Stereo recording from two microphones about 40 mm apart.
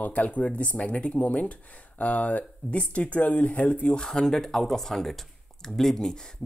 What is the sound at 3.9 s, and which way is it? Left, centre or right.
Speech, centre.